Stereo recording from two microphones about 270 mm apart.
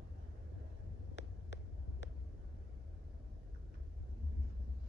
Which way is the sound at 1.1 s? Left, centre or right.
Left.